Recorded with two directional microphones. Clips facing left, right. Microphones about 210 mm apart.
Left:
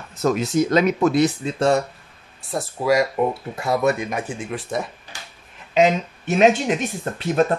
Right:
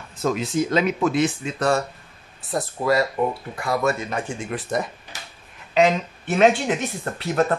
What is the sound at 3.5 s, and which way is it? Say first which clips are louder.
Speech: left 4 dB; 25° left (ahead or behind).